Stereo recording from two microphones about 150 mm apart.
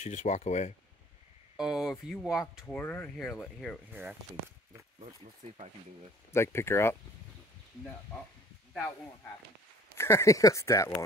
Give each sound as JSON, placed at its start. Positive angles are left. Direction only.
{"t": 0.0, "sound": "speech", "side_deg": 55}
{"t": 1.6, "sound": "speech", "side_deg": -5}
{"t": 3.9, "sound": "speech", "side_deg": -10}
{"t": 6.3, "sound": "speech", "side_deg": 15}
{"t": 9.9, "sound": "speech", "side_deg": 20}